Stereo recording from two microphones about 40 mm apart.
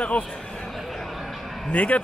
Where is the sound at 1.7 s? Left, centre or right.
Left.